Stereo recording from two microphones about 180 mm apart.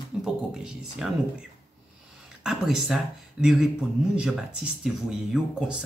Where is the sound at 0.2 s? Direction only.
5° right (ahead or behind).